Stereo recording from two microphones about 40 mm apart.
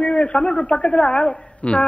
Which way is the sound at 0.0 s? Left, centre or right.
Left.